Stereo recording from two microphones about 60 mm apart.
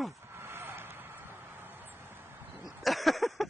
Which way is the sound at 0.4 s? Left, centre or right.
Right.